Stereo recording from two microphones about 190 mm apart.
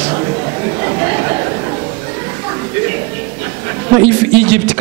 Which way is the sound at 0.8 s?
15° right (ahead or behind).